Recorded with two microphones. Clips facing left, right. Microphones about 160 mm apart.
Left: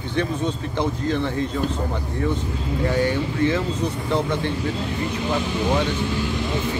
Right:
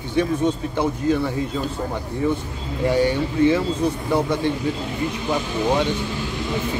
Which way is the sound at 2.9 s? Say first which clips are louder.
Right 4 dB; 15° right (ahead or behind).